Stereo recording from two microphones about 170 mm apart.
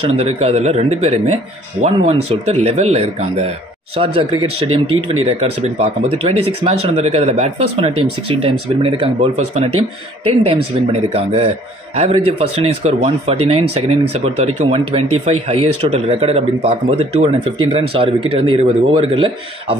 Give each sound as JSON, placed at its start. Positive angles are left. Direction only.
{"t": 0.2, "sound": "speech", "side_deg": -35}